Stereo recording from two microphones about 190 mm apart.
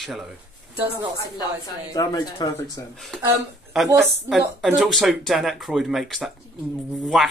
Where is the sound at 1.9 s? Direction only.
20° left (ahead or behind).